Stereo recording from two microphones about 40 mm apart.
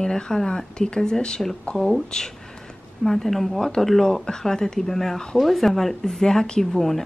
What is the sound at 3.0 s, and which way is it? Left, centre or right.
Speech, centre.